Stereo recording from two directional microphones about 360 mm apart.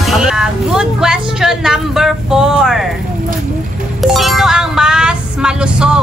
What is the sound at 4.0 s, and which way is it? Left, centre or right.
Music, centre.